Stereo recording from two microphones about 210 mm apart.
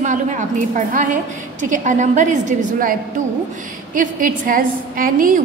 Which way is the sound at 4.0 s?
40° right (ahead or behind).